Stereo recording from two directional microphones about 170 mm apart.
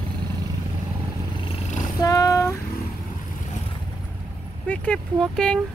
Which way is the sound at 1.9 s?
20° left (ahead or behind).